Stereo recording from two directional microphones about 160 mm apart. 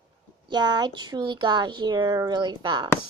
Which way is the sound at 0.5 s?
25° right (ahead or behind).